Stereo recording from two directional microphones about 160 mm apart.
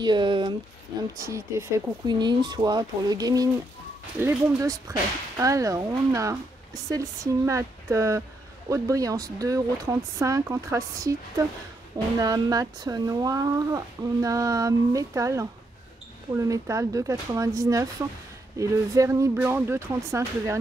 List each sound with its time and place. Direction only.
0.0 s speech: 30° right (ahead or behind)
1.1 s speech: 20° right (ahead or behind)
2.0 s speech: 25° right (ahead or behind)